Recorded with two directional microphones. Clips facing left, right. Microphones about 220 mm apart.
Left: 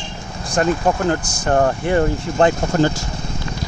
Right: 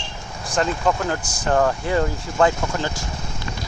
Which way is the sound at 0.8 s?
25° left (ahead or behind).